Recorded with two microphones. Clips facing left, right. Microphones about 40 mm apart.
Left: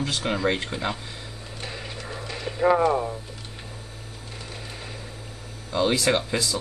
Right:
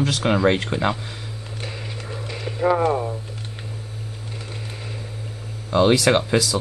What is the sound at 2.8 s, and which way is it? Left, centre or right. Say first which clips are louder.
Speech: right 1 dB; centre.